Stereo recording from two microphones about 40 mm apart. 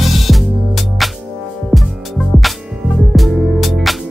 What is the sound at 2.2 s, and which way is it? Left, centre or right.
Music, centre.